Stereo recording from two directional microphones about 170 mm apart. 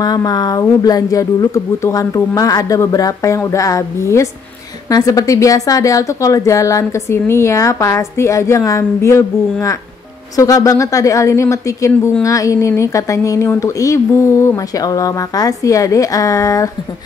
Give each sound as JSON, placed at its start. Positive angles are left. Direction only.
{"t": 0.0, "sound": "a woman's voice", "side_deg": 25}